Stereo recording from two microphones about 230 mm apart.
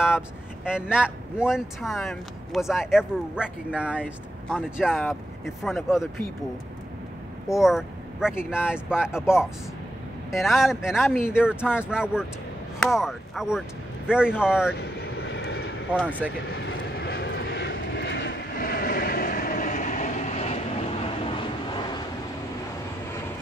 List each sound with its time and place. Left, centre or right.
0.7 s speech: centre
4.0 s speech: centre
7.4 s speech: centre
14.8 s vehicle: left
15.9 s speech: centre
16.4 s vehicle: left; by 22.0 s centre